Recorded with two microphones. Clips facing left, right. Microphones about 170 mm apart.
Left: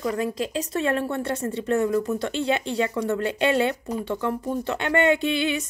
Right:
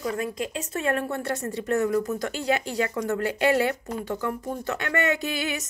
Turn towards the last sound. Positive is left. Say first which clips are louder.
# left 5 dB
turn(degrees=25)  # may be behind; listen again after turning